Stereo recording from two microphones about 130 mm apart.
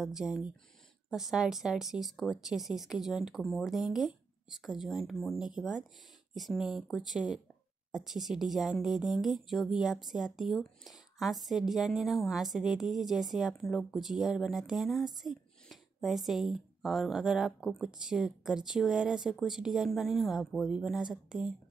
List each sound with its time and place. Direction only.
0.0 s a woman's voice: 5° right (ahead or behind)